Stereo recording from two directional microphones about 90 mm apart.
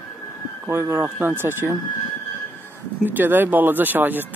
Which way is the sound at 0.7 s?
25° right (ahead or behind).